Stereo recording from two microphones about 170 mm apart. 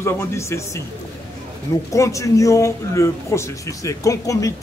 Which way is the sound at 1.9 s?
20° left (ahead or behind).